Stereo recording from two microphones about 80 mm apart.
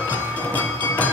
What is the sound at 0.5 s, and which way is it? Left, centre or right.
Music, left.